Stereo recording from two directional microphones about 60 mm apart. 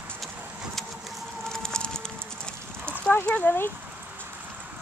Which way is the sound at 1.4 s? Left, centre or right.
Centre.